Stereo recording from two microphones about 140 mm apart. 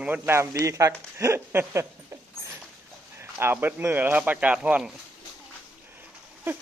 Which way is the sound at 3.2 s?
15° right (ahead or behind).